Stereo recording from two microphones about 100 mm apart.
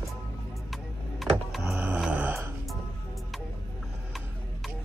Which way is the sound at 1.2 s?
Centre (ahead or behind).